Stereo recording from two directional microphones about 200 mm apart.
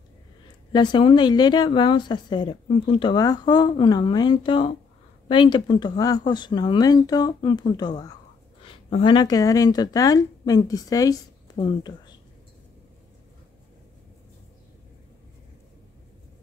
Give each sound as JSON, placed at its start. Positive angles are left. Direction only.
{"t": 0.7, "sound": "speech", "side_deg": 25}
{"t": 8.9, "sound": "speech", "side_deg": 25}